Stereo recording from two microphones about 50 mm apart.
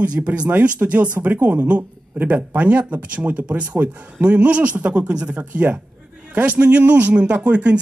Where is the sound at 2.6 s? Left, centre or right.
Right.